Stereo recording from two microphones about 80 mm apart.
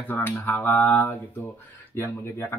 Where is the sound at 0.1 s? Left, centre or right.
Left.